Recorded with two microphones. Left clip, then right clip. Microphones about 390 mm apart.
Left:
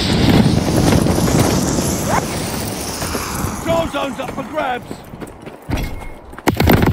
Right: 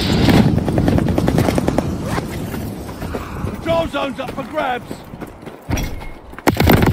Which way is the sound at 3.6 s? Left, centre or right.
Centre.